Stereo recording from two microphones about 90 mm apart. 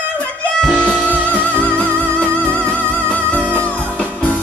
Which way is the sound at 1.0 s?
20° right (ahead or behind).